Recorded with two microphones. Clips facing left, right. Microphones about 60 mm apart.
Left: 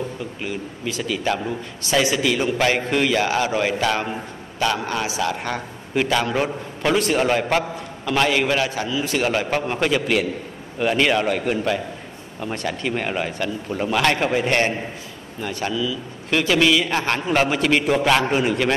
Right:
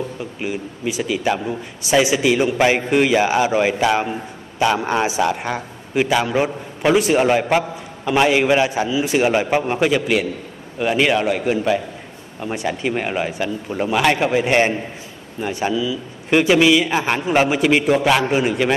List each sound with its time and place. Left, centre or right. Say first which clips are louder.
0.4 s a man's voice: right 6 dB; centre
5.3 s a man's voice: right 3 dB; centre